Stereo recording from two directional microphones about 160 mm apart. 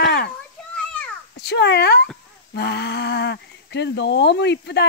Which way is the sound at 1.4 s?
90° left.